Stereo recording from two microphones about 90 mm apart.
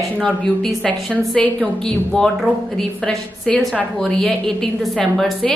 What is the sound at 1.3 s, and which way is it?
A woman's voice, 10° left (ahead or behind).